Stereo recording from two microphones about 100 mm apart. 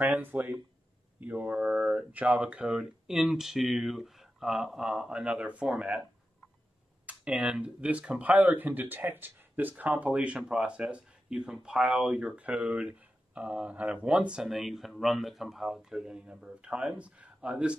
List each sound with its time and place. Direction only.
0.0 s speech: 20° right (ahead or behind)
7.1 s speech: 10° right (ahead or behind)